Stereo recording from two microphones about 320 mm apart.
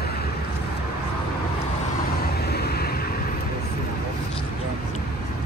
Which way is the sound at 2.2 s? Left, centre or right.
Left.